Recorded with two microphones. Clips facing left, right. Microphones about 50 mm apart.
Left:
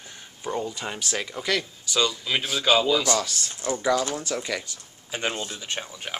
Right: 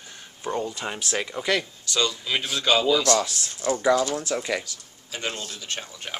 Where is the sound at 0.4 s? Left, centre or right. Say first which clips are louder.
Right 1 dB; centre.